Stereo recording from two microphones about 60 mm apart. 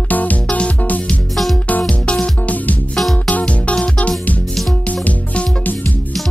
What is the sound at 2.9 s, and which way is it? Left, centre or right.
Music, centre.